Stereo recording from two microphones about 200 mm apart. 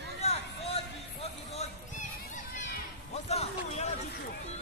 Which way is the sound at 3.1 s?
30° left (ahead or behind).